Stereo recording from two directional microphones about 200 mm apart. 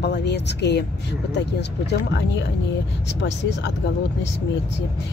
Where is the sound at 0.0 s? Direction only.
60° left (ahead or behind).